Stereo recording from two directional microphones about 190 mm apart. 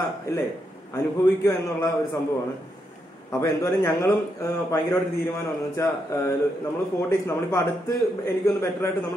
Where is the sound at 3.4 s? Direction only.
15° left (ahead or behind).